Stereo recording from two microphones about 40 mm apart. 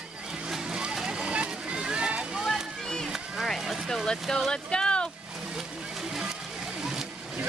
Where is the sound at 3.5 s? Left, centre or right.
Centre.